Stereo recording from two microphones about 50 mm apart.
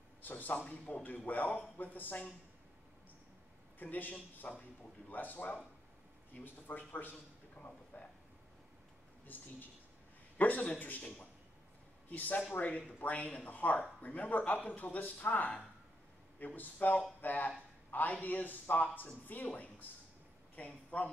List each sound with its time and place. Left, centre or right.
0.2 s a man's voice: left
3.8 s a man's voice: left
7.5 s a sound: left
9.3 s a man's voice: left
12.1 s a man's voice: left